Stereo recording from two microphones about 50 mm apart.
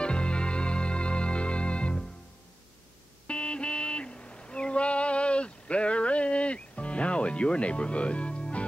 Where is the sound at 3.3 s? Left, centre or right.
Left.